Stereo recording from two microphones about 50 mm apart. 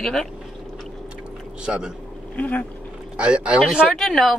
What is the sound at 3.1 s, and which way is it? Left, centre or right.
Speech, right.